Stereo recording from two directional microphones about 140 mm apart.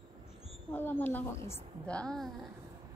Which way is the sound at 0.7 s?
15° left (ahead or behind).